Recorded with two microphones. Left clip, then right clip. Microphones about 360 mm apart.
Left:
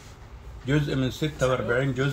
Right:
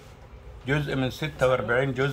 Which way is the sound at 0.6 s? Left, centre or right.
Centre.